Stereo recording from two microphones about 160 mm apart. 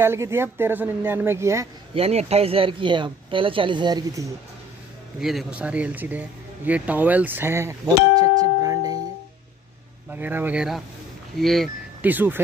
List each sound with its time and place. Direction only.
0.0 s a woman's voice: 15° right (ahead or behind)
2.0 s speech: 40° right (ahead or behind); by 4.3 s 20° right (ahead or behind)
5.2 s speech: centre (ahead or behind); by 8.9 s 25° right (ahead or behind)
10.1 s a woman's voice: 10° right (ahead or behind)
12.0 s a woman's voice: 10° right (ahead or behind)